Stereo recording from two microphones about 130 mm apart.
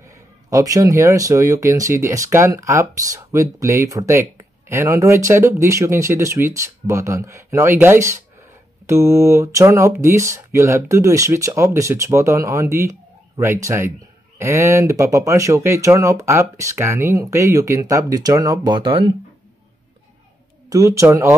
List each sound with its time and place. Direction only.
0.5 s speech: 25° right (ahead or behind); by 19.1 s 45° right (ahead or behind)
20.7 s speech: 25° right (ahead or behind)